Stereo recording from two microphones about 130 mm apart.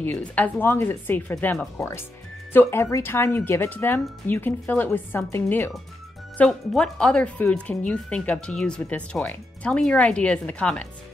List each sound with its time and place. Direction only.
0.0 s speech: 15° left (ahead or behind)
6.3 s speech: 5° left (ahead or behind)